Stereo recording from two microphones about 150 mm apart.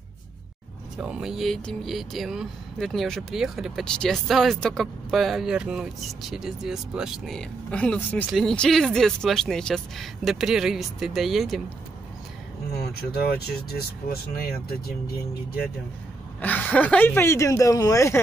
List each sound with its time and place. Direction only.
0.9 s speech: 5° right (ahead or behind)
13.7 s speech: 90° left
16.3 s speech: 10° left (ahead or behind)